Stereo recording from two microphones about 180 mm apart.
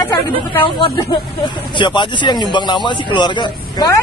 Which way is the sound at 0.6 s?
25° left (ahead or behind).